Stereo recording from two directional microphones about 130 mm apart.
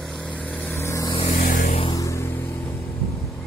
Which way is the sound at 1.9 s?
25° left (ahead or behind).